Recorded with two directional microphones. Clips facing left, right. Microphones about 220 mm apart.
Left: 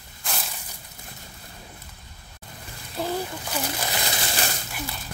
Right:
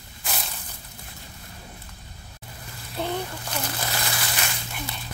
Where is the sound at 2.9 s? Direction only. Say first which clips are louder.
Left 1 dB; 5° left (ahead or behind).